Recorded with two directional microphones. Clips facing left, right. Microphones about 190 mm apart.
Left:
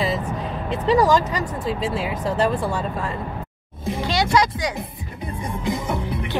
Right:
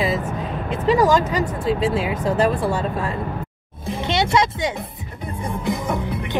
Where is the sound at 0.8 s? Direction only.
Centre (ahead or behind).